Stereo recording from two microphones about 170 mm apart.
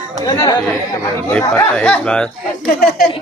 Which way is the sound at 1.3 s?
5° left (ahead or behind).